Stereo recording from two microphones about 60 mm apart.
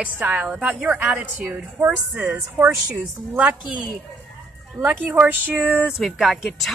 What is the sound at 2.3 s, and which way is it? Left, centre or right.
Speech, right.